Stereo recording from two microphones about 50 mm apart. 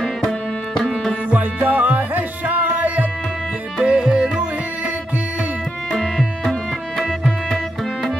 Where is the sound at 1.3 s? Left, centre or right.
Right.